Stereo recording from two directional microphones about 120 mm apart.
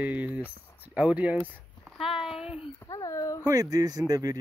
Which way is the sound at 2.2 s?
5° right (ahead or behind).